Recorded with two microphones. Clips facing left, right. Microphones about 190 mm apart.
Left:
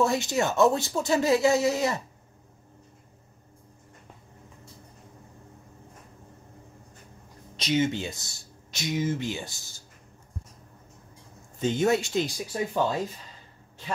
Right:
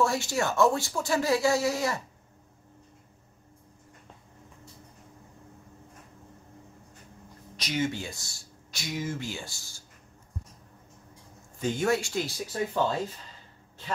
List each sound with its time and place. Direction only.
0.0 s speech: 20° left (ahead or behind)
7.5 s speech: 25° left (ahead or behind)
11.6 s speech: 20° left (ahead or behind)